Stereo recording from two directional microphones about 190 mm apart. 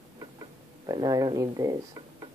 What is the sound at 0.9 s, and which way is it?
Speech, 20° right (ahead or behind).